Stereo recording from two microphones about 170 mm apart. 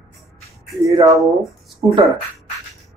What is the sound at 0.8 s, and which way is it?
Speech, 20° right (ahead or behind).